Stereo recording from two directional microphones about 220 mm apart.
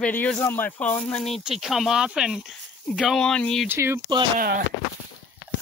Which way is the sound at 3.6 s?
10° right (ahead or behind).